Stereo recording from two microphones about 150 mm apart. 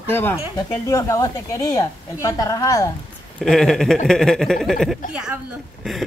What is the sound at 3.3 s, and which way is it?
A woman's voice, 5° left (ahead or behind).